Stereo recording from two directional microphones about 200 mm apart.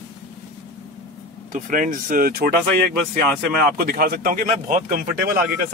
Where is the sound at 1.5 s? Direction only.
45° right (ahead or behind).